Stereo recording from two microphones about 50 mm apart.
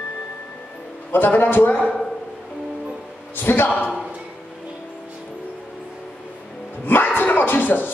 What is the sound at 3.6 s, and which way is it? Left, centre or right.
Speech, left.